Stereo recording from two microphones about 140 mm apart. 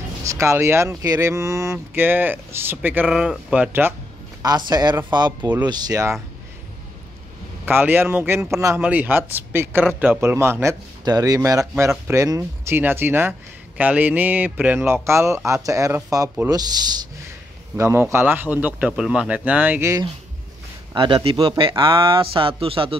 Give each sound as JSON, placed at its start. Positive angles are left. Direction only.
{"t": 0.3, "sound": "speech", "side_deg": -20}
{"t": 4.4, "sound": "speech", "side_deg": -30}
{"t": 7.6, "sound": "speech", "side_deg": -15}
{"t": 17.7, "sound": "speech", "side_deg": -20}
{"t": 20.9, "sound": "speech", "side_deg": -35}